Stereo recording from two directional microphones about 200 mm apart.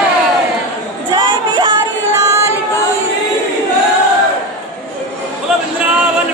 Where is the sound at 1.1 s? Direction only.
25° right (ahead or behind).